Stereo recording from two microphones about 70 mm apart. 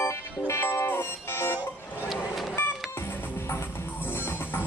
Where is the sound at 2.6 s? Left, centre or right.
Left.